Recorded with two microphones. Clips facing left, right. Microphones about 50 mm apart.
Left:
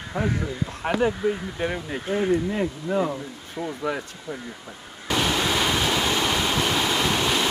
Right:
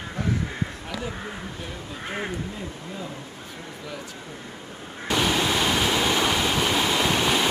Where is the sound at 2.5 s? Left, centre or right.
Left.